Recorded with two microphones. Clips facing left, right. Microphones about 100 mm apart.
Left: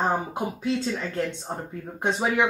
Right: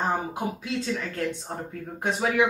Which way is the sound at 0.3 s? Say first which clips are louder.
Left 3 dB; 30° left (ahead or behind).